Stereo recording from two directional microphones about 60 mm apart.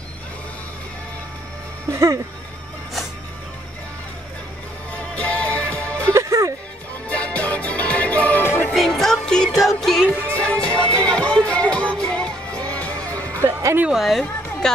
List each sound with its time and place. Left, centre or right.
1.9 s speech: right
4.9 s music: left
6.1 s music: right
7.1 s music: left
8.4 s music: left
8.7 s music: centre
9.6 s music: centre
10.3 s music: centre
13.4 s music: right
13.9 s a woman's voice: centre